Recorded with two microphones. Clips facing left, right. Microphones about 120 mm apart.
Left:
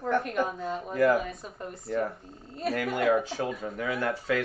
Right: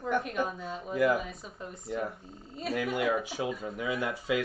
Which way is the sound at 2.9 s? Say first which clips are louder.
Left 5 dB; 55° left (ahead or behind).